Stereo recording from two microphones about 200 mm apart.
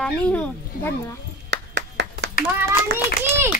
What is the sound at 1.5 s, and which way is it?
Clapping, 60° right (ahead or behind).